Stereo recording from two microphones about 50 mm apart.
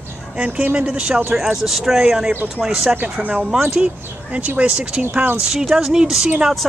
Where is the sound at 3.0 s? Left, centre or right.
Right.